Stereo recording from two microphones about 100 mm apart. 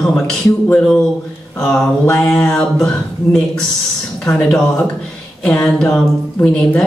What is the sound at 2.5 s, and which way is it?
Speech, 10° left (ahead or behind).